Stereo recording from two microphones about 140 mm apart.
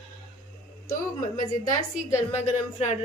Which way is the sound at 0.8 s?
70° left (ahead or behind).